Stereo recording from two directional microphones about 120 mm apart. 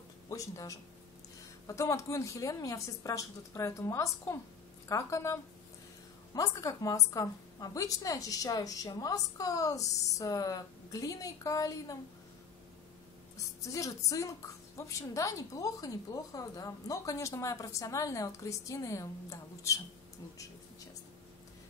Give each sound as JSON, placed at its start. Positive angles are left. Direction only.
{"t": 0.3, "sound": "a woman's voice", "side_deg": 30}
{"t": 13.7, "sound": "a woman's voice", "side_deg": 30}